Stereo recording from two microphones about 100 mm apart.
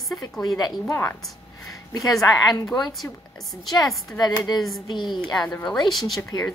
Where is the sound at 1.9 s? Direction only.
35° left (ahead or behind).